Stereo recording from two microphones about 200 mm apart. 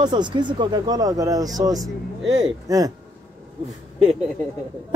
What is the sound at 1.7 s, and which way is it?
Speech, centre (ahead or behind).